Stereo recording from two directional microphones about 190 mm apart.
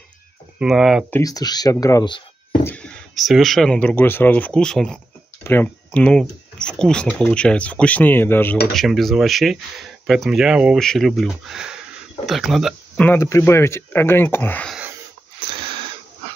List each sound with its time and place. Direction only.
0.6 s speech: centre (ahead or behind)
1.1 s speech: 20° left (ahead or behind)
2.6 s speech: 5° left (ahead or behind)
8.7 s speech: centre (ahead or behind)
15.4 s sniff: 25° right (ahead or behind)